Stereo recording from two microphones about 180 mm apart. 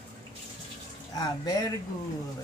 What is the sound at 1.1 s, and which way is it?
Speech, 20° left (ahead or behind).